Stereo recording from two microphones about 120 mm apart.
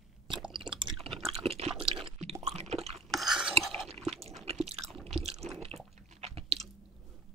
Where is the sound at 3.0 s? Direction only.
Centre (ahead or behind).